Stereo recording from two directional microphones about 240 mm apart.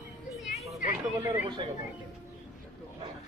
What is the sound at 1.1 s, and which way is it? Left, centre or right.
Speech, centre.